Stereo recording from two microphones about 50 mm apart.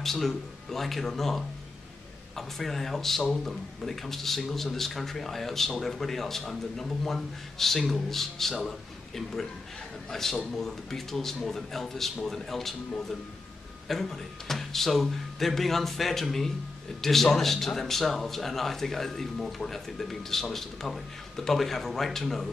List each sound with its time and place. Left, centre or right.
0.0 s a man's voice: centre